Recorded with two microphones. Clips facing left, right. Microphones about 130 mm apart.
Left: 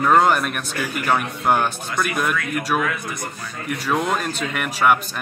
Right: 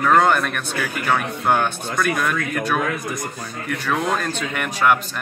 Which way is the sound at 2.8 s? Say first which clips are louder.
Right 1 dB; 40° right (ahead or behind).